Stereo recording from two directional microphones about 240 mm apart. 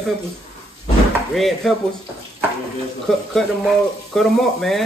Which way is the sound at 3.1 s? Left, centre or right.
Centre.